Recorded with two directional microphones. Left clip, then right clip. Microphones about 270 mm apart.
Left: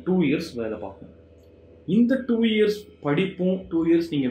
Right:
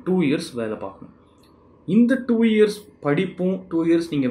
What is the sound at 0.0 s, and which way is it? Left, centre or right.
Speech, centre.